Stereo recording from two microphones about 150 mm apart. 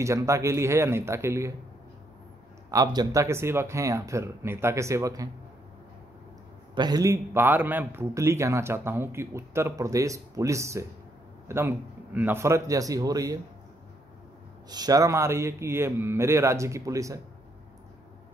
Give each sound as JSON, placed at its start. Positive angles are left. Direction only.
{"t": 0.0, "sound": "a man's voice", "side_deg": -20}
{"t": 2.7, "sound": "a man's voice", "side_deg": -25}
{"t": 6.7, "sound": "a man's voice", "side_deg": -30}
{"t": 14.7, "sound": "a man's voice", "side_deg": -25}